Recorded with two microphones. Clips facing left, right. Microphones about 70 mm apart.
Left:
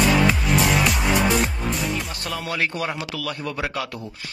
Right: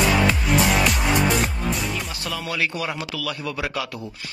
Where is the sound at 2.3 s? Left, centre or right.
Left.